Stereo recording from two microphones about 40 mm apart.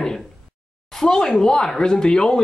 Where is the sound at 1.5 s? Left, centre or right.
Centre.